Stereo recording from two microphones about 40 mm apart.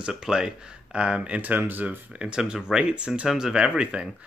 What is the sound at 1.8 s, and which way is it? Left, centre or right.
Speech, right.